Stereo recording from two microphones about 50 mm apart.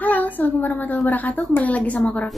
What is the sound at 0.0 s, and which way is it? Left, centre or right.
A woman's voice, left.